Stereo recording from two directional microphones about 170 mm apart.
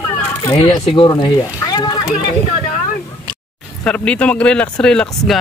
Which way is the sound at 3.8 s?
5° left (ahead or behind).